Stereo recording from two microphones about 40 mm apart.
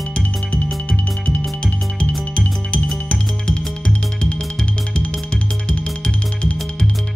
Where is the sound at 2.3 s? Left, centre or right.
Left.